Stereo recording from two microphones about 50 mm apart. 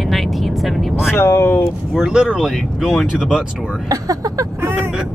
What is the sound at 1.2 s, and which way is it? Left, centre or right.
Speech, left.